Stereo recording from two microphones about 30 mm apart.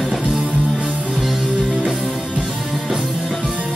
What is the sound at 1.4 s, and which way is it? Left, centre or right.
Music, right.